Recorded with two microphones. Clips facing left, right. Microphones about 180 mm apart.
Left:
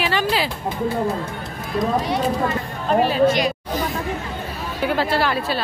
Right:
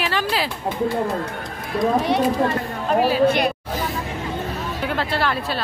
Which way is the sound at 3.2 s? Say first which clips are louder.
Even; 55° right (ahead or behind).